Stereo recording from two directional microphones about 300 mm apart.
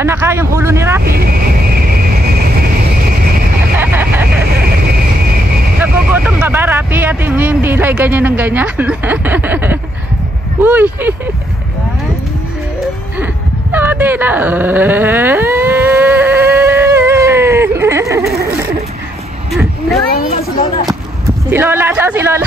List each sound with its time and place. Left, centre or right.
0.0 s speech: centre
1.0 s speech: right
3.7 s vehicle: centre
5.8 s speech: centre
13.2 s a sound: centre
20.2 s a sound: left
21.5 s speech: centre